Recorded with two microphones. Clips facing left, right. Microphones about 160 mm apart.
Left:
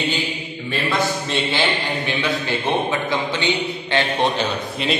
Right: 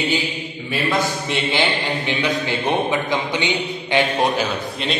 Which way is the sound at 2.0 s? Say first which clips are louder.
Right 1 dB; 15° right (ahead or behind).